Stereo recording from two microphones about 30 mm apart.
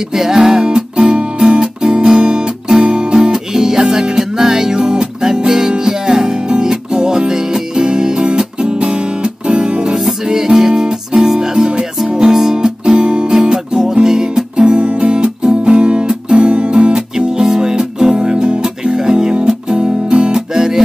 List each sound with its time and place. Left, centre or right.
0.1 s music: centre
0.4 s music: right
1.4 s guitar: right
2.8 s music: right
3.2 s music: centre; by 9.9 s right
10.2 s music: centre
12.5 s music: right
13.3 s music: right
14.6 s music: right
15.0 s music: right
20.3 s music: centre